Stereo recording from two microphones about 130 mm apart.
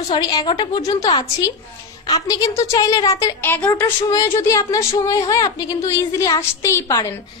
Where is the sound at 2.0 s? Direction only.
30° left (ahead or behind).